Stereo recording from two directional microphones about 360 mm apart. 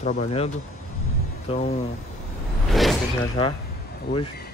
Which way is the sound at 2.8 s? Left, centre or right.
Centre.